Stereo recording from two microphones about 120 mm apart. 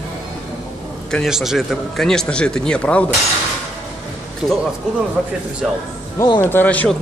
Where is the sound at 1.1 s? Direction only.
Centre (ahead or behind).